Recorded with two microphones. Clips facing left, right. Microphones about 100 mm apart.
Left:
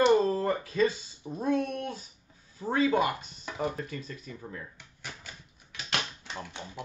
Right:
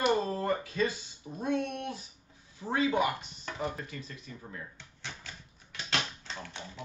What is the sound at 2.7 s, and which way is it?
Speech, 35° left (ahead or behind).